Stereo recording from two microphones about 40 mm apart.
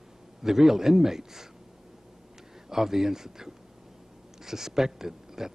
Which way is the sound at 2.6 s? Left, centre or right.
Centre.